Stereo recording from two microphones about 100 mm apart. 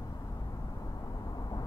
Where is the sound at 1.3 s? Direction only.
40° left (ahead or behind).